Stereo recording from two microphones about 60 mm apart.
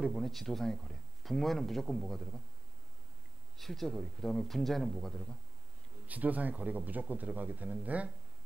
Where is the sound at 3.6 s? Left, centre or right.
Centre.